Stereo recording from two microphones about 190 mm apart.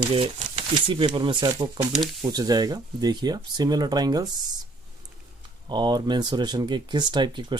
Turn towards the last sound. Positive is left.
turn(degrees=-25)  # may be behind; listen again after turning